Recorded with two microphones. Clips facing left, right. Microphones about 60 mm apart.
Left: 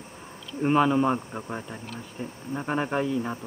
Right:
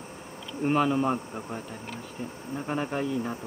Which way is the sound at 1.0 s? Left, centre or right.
Left.